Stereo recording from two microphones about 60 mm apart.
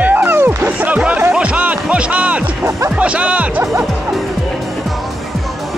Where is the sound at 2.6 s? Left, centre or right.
Right.